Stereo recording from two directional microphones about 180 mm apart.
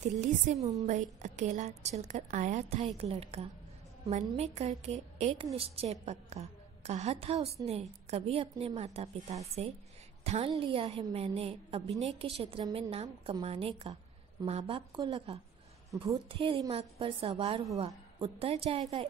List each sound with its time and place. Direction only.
0.0 s a woman's voice: 40° right (ahead or behind)
0.6 s a woman's voice: 20° right (ahead or behind)
0.8 s a woman's voice: 40° right (ahead or behind)